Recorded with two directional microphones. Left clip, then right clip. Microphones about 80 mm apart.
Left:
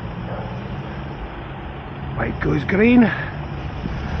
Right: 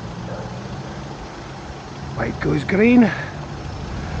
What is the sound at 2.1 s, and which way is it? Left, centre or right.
Speech, right.